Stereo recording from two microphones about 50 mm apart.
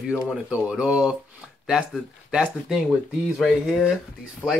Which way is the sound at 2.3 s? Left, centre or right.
Centre.